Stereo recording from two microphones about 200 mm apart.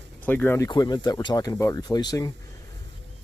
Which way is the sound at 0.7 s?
20° left (ahead or behind).